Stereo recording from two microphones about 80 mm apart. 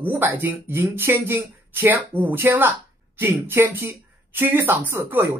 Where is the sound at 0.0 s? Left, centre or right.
Right.